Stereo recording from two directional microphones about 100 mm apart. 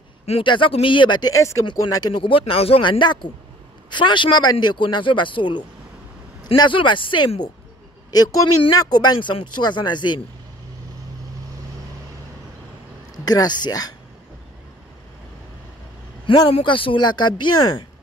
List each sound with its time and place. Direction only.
0.3 s speech: 60° left (ahead or behind)
1.3 s speech: 30° left (ahead or behind)
2.2 s a man's voice: 65° left (ahead or behind)
8.1 s a man's voice: 40° left (ahead or behind)
13.1 s speech: 40° left (ahead or behind)
16.4 s a man's voice: 65° left (ahead or behind); by 17.8 s 45° left (ahead or behind)